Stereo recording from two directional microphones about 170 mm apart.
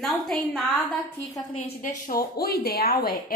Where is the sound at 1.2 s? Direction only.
20° left (ahead or behind).